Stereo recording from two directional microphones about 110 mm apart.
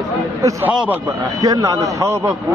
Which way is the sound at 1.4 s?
30° right (ahead or behind).